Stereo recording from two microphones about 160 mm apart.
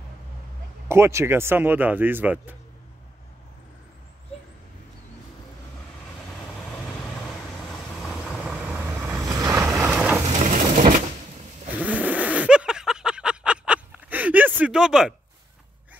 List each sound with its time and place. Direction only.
0.8 s speech: 15° right (ahead or behind)
8.0 s vehicle: centre (ahead or behind); by 9.8 s 20° right (ahead or behind)
9.8 s vehicle: 5° right (ahead or behind)
10.4 s crushing: 50° right (ahead or behind)
11.8 s vehicle: 10° right (ahead or behind)